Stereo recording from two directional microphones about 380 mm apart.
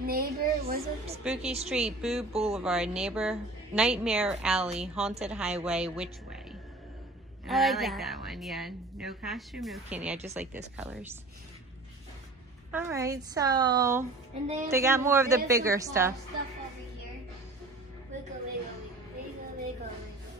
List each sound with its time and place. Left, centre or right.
0.0 s a woman's voice: right
1.7 s a woman's voice: centre
2.3 s a woman's voice: centre
2.6 s a woman's voice: centre
7.4 s a woman's voice: centre
12.7 s a woman's voice: centre